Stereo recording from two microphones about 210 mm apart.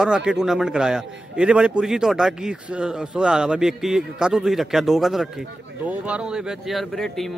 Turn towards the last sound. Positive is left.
turn(degrees=0)  # may be behind; listen again after turning